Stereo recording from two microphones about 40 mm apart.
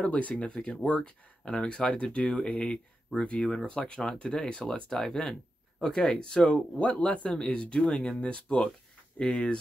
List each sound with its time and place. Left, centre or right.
0.1 s speech: left
0.4 s speech: left
4.8 s speech: centre
6.8 s speech: left
7.2 s speech: centre
8.2 s speech: left